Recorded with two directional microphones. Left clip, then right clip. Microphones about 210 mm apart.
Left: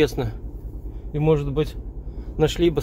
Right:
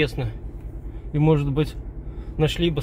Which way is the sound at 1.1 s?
10° right (ahead or behind).